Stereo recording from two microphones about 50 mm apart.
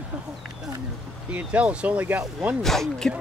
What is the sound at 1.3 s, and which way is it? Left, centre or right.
Speech, right.